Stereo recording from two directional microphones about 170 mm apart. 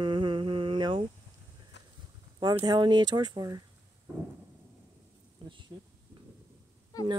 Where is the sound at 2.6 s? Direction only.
25° right (ahead or behind).